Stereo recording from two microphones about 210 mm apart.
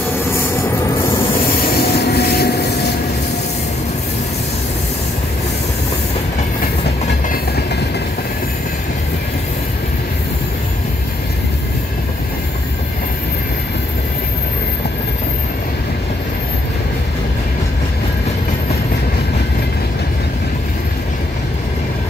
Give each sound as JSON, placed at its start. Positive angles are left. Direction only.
{"t": 1.8, "sound": "train", "side_deg": 50}